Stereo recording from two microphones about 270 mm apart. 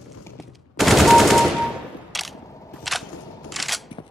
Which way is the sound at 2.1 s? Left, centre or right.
Centre.